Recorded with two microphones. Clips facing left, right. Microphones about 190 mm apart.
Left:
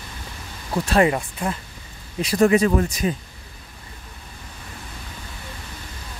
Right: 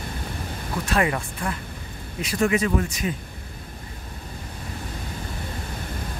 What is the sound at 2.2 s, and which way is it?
Speech, 35° left (ahead or behind).